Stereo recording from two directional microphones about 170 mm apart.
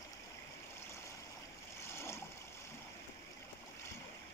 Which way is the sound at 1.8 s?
15° left (ahead or behind).